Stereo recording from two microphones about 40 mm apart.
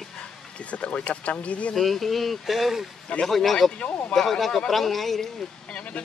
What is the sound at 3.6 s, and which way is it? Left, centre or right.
Speech, left.